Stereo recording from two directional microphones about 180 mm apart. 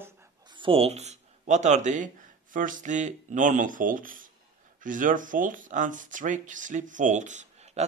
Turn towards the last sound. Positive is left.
turn(degrees=-40)  # may be behind; listen again after turning